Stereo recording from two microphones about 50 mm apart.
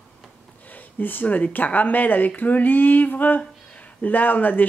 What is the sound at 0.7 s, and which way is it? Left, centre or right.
Speech, left.